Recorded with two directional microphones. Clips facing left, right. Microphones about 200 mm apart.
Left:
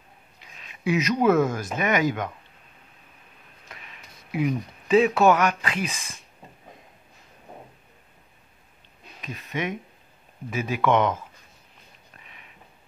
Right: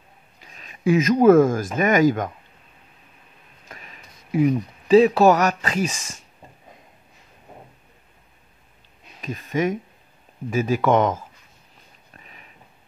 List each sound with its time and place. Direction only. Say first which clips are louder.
0.6 s speech: right 6 dB; 45° right (ahead or behind)
3.6 s speech: right 3 dB; 45° right (ahead or behind)
9.2 s speech: right 7 dB; 45° right (ahead or behind)
12.2 s a sound: right 4 dB; 40° right (ahead or behind)